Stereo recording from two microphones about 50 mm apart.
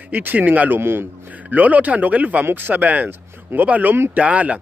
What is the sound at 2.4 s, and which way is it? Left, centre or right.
Speech, right.